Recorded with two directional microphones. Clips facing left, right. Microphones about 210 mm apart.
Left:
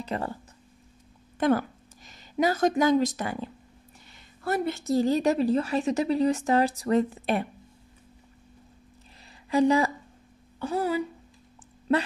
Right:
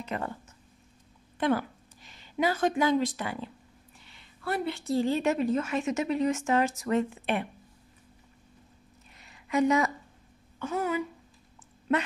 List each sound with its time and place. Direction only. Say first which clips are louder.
0.0 s speech: left 3 dB; 35° left (ahead or behind)
1.4 s a woman's voice: left 3 dB; 45° left (ahead or behind)
9.2 s a sound: left 3 dB; 30° left (ahead or behind)
10.6 s a woman's voice: left 3 dB; 35° left (ahead or behind)